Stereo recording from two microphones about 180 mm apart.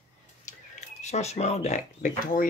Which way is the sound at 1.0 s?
40° left (ahead or behind).